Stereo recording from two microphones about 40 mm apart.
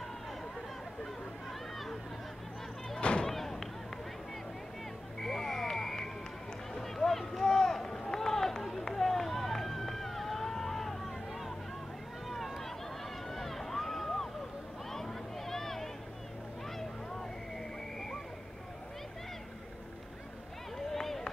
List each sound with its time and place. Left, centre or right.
3.0 s a sound: left
3.3 s thump: centre
5.2 s vehicle: centre
6.7 s run: centre
12.3 s a sound: centre
20.7 s run: centre